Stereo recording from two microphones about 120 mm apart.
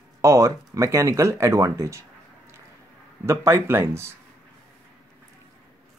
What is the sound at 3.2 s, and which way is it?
Speech, 20° right (ahead or behind).